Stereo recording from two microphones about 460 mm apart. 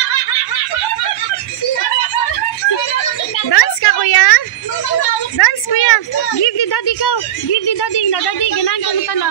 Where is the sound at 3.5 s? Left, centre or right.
Left.